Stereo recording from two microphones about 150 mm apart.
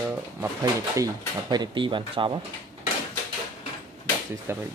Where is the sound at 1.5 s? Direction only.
30° right (ahead or behind).